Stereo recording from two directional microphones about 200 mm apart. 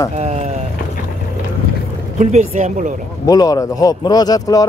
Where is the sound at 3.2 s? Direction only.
20° left (ahead or behind).